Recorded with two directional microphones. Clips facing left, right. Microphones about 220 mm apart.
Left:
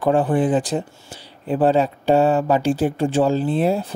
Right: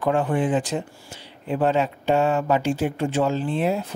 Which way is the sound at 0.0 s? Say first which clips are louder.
Left 4 dB; 35° left (ahead or behind).